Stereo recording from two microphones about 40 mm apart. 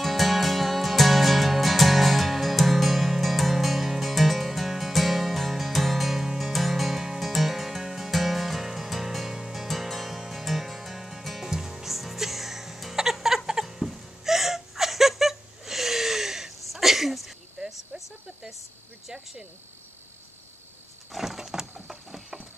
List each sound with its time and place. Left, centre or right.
0.0 s music: centre
13.5 s chuckle: centre
16.6 s sneeze: centre
17.6 s insect: centre
21.2 s a sound: centre